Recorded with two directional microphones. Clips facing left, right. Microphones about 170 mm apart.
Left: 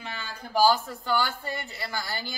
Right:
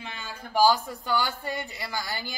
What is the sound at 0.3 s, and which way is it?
Speech, 15° right (ahead or behind).